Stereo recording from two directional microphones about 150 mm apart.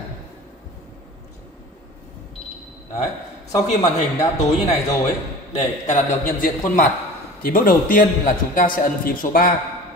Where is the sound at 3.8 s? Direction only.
50° left (ahead or behind).